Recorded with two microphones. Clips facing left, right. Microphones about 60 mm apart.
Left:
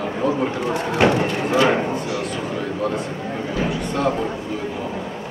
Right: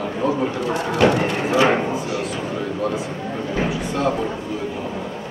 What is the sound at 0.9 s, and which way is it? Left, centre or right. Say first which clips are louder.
Speech: even; left.